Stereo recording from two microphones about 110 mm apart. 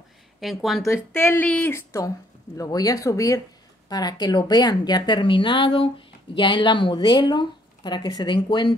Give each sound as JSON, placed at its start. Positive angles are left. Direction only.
{"t": 0.4, "sound": "speech", "side_deg": 0}
{"t": 0.8, "sound": "a woman's voice", "side_deg": 20}